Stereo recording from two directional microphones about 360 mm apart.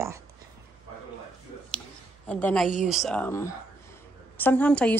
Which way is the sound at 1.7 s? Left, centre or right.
Centre.